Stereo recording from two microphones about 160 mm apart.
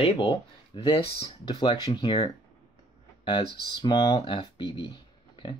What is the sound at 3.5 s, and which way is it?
Speech, 25° right (ahead or behind).